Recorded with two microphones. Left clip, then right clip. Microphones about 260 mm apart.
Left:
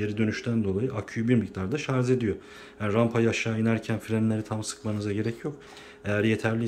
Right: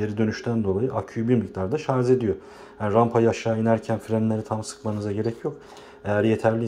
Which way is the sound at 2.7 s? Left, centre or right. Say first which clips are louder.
Right 5 dB; centre.